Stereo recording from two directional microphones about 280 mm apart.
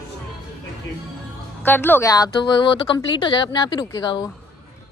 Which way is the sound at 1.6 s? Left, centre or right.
Centre.